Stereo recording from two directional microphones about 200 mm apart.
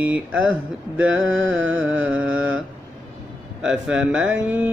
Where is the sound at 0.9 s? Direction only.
75° right (ahead or behind).